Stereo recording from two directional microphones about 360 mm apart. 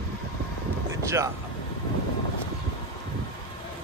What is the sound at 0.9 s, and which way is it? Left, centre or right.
Vehicle, centre.